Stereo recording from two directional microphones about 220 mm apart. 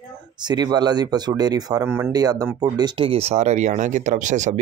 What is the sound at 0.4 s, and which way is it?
Speech, 20° right (ahead or behind).